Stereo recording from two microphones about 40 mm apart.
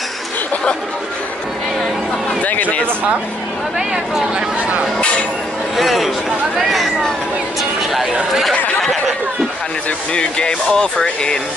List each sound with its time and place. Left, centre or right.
2.4 s a sound: left
3.9 s speech: centre
5.8 s speech: centre
10.1 s speech: left